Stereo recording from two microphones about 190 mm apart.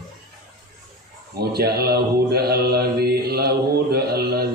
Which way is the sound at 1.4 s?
55° right (ahead or behind).